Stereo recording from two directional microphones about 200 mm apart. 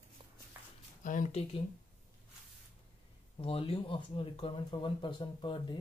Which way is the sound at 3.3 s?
30° left (ahead or behind).